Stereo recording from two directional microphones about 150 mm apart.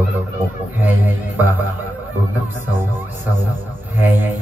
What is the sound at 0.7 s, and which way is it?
A man's voice, 10° right (ahead or behind).